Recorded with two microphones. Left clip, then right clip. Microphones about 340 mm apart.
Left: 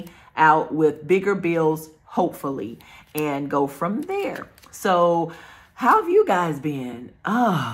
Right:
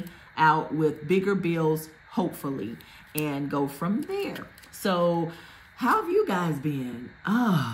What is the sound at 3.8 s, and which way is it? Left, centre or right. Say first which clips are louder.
A woman's voice: left 5 dB; centre.